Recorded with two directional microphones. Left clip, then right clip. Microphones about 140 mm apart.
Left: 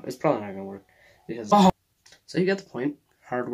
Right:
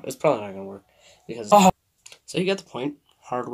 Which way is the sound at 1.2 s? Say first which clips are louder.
Right 4 dB; 15° right (ahead or behind).